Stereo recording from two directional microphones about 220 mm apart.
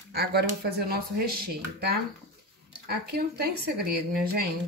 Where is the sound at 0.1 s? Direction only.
45° right (ahead or behind).